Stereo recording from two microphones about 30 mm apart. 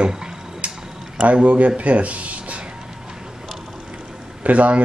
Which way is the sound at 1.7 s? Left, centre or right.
Right.